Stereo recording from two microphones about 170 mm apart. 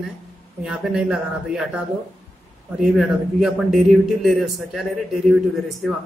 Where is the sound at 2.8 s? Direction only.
5° right (ahead or behind).